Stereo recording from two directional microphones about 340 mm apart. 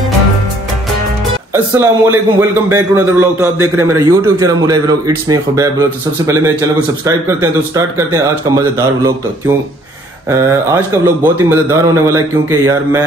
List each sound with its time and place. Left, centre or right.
1.5 s a man's voice: centre
10.3 s a man's voice: centre